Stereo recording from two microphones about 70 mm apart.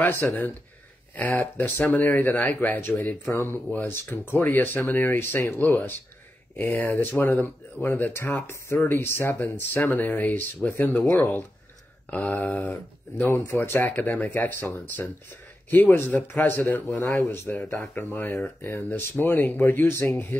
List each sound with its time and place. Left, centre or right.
0.0 s speech: left
3.3 s speech: left
12.1 s speech: left
15.7 s speech: left
17.1 s speech: left